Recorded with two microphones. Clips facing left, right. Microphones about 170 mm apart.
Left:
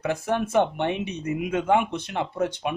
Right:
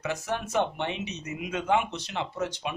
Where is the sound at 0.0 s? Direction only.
55° left (ahead or behind).